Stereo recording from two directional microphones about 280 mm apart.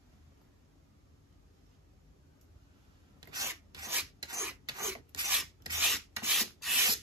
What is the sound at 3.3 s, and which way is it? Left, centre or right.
Filing, centre.